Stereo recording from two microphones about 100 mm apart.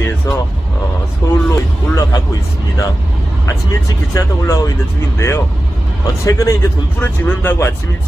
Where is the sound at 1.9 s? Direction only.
35° left (ahead or behind).